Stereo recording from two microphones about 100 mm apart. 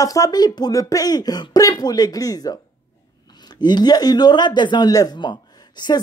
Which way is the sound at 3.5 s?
45° left (ahead or behind).